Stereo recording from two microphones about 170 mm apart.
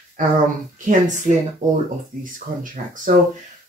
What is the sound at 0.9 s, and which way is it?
Speech, 50° right (ahead or behind).